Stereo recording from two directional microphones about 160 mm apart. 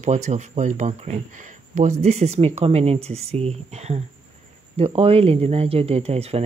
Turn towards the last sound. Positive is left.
turn(degrees=-40)  # may be behind; listen again after turning